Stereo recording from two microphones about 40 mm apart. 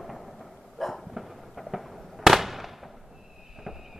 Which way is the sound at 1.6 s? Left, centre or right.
Centre.